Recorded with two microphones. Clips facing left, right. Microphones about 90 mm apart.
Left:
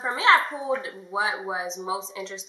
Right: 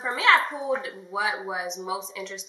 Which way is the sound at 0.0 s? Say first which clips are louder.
Left 1 dB; 20° left (ahead or behind).